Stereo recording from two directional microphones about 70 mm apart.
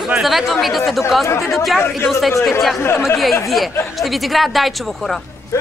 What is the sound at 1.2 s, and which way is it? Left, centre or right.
Speech, left.